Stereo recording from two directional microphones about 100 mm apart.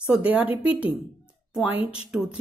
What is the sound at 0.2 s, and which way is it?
Speech, 15° right (ahead or behind).